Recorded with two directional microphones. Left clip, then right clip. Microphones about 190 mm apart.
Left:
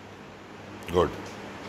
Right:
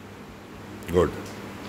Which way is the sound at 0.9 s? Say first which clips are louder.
Right 2 dB; 30° right (ahead or behind).